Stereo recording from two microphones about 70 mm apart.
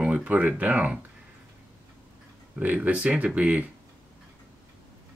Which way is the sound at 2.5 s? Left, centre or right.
Right.